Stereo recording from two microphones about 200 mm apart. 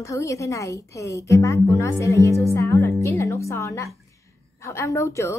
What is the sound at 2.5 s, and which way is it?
Music, 15° left (ahead or behind).